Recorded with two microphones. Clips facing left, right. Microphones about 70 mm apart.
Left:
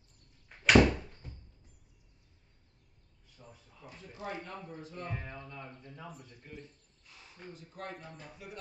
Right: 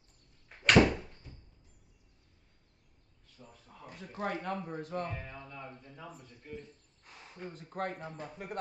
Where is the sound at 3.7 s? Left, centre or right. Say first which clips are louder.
Right 6 dB; right.